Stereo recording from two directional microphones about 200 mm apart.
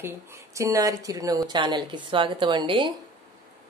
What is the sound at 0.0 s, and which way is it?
Speech, 15° right (ahead or behind).